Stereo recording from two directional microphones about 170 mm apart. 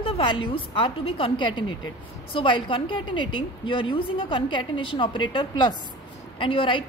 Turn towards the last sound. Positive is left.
turn(degrees=30)  # may be behind; listen again after turning